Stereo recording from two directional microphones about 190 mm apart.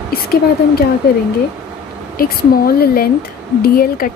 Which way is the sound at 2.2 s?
55° left (ahead or behind).